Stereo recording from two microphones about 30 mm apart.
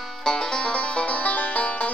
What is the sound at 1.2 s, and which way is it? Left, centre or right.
Music, left.